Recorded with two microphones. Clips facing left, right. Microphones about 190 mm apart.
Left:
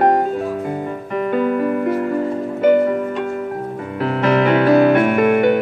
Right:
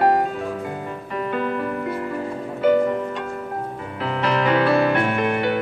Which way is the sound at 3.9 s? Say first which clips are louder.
Left 6 dB; 45° left (ahead or behind).